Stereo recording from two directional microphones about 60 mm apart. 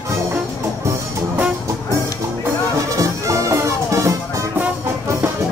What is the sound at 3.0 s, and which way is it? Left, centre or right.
Music, right.